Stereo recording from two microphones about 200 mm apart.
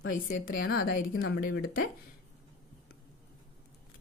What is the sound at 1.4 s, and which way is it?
Speech, 50° left (ahead or behind).